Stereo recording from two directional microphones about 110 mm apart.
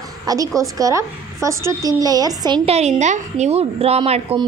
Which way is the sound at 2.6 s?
80° right.